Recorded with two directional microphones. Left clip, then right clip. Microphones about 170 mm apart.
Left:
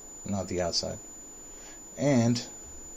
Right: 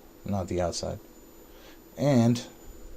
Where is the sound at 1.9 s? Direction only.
35° right (ahead or behind).